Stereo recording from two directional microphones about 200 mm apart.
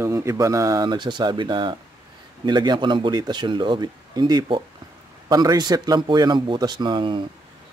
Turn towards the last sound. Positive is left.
turn(degrees=-25)  # may be behind; listen again after turning